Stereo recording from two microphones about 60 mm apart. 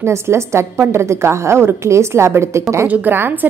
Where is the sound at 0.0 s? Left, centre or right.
Right.